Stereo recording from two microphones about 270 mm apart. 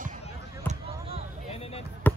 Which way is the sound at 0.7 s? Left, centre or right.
Right.